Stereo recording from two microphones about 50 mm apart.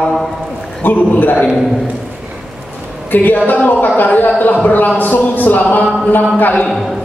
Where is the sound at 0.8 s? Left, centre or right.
Left.